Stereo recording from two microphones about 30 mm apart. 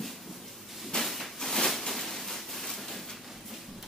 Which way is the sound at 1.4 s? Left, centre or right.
Centre.